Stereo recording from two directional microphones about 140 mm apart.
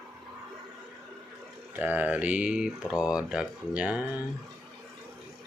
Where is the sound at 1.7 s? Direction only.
10° right (ahead or behind).